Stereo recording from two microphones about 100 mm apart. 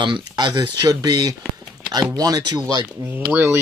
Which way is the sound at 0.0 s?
50° right (ahead or behind).